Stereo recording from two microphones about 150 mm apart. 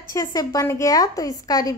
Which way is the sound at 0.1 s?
25° left (ahead or behind).